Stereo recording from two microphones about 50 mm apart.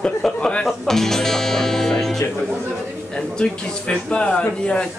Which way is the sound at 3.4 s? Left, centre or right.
Centre.